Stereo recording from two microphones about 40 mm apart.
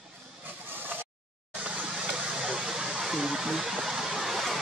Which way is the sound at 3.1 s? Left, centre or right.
Centre.